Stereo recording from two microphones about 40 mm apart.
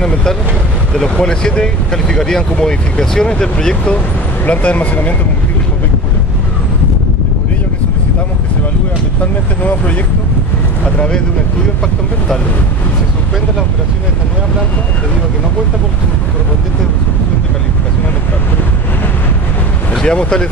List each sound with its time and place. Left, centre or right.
1.1 s speech: left
4.5 s speech: left
9.2 s speech: left
11.0 s speech: left
20.0 s speech: left